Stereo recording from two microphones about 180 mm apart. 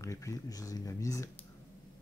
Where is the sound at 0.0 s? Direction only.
15° left (ahead or behind).